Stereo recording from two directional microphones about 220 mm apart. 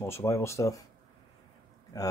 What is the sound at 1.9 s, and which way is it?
Speech, 15° left (ahead or behind).